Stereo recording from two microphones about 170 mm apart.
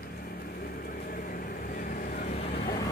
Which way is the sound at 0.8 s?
55° left (ahead or behind).